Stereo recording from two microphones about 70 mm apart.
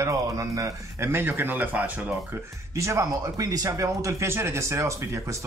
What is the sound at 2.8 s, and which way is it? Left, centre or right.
Speech, right.